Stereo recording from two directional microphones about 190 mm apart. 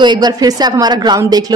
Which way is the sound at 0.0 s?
20° right (ahead or behind).